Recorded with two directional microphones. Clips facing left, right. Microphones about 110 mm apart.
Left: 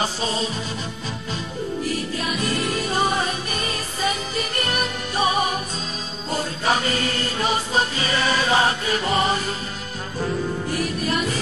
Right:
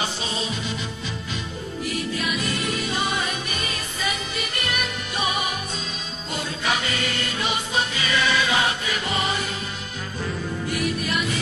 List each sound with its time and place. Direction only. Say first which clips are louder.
0.0 s music: left 4 dB; 40° left (ahead or behind)
1.9 s music: left 1 dB; 35° left (ahead or behind)
10.7 s music: right 1 dB; 40° left (ahead or behind)